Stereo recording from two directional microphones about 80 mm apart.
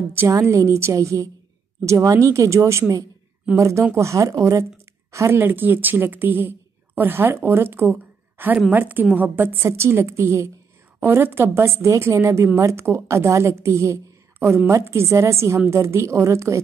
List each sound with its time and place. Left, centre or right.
0.3 s a woman's voice: right
5.4 s a woman's voice: right